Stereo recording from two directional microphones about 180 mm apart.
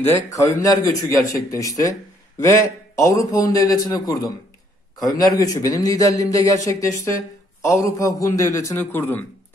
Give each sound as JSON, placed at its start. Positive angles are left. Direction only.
{"t": 0.0, "sound": "a man's voice", "side_deg": 15}